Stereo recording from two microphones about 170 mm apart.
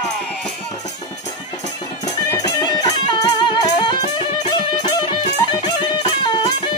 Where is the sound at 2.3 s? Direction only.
25° left (ahead or behind).